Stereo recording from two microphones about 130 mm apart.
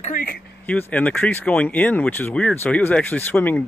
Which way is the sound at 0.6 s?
10° left (ahead or behind).